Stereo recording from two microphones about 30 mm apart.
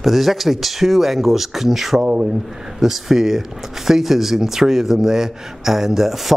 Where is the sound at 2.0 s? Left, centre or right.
Right.